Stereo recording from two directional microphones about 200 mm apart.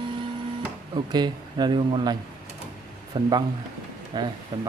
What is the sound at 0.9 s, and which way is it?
A man's voice, 20° right (ahead or behind).